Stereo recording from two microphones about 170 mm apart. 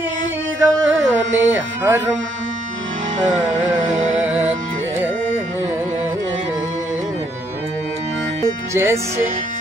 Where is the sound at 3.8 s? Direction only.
45° right (ahead or behind).